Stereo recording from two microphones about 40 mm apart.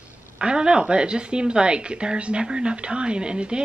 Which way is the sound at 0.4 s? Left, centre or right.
Right.